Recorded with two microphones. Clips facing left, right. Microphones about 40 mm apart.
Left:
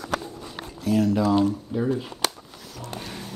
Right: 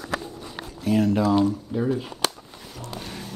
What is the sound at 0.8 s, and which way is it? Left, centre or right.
Speech, right.